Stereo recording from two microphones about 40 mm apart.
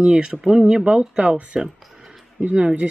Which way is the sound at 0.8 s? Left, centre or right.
Right.